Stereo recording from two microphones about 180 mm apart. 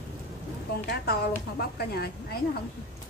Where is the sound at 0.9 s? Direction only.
60° left (ahead or behind).